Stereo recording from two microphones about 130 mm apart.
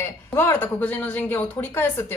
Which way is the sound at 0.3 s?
15° left (ahead or behind).